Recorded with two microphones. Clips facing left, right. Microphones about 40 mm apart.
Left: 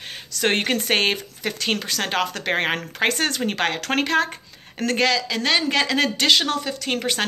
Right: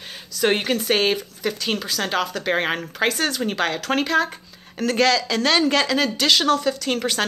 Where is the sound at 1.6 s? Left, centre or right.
Left.